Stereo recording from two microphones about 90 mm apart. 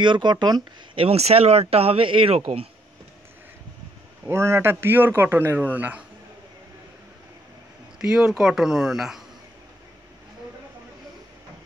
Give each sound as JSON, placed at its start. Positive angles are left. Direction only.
{"t": 0.0, "sound": "speech", "side_deg": -60}
{"t": 0.9, "sound": "speech", "side_deg": -90}
{"t": 4.3, "sound": "a man's voice", "side_deg": -30}
{"t": 8.0, "sound": "speech", "side_deg": -5}